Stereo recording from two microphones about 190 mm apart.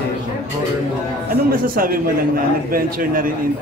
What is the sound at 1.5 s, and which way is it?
A man's voice, 50° right (ahead or behind).